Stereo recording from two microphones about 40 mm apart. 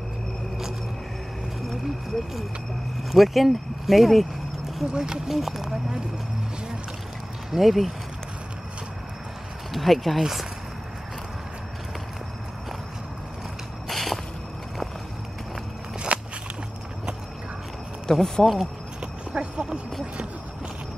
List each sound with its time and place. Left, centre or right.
3.0 s speech: centre
4.9 s speech: right
5.3 s speech: centre
7.5 s speech: centre
9.7 s speech: centre
13.8 s walk: centre
16.1 s walk: right
18.0 s speech: centre
18.9 s horse: right